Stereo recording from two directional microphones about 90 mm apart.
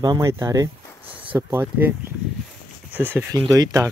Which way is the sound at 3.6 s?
40° right (ahead or behind).